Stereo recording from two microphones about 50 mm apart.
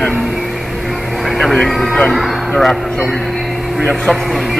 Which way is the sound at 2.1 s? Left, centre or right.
Centre.